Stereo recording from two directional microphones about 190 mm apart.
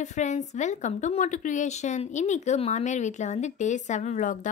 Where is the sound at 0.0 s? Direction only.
40° left (ahead or behind).